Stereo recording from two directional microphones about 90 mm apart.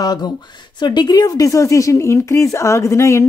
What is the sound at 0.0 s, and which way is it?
Speech, 45° left (ahead or behind).